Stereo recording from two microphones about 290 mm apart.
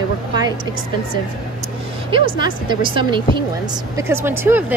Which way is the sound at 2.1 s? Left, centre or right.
Centre.